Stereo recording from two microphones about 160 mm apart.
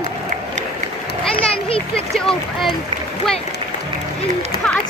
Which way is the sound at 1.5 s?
35° left (ahead or behind).